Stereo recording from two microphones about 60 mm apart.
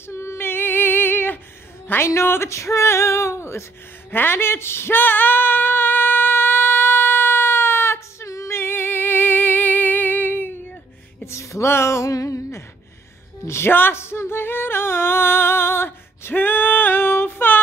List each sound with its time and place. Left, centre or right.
0.1 s female singing: left
1.9 s a woman's voice: left
2.2 s a sound: left
4.1 s a sound: left
8.3 s music: left
8.5 s music: left
11.2 s speech: left
13.7 s music: left